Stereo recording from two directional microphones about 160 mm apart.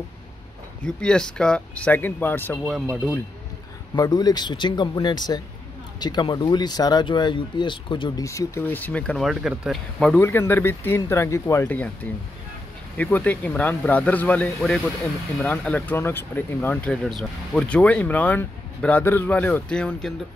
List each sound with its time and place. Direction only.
0.8 s speech: 5° left (ahead or behind)
2.7 s speech: 10° right (ahead or behind)
3.9 s speech: 25° left (ahead or behind); by 20.2 s 5° left (ahead or behind)